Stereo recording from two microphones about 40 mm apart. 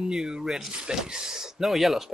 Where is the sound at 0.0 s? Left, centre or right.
Centre.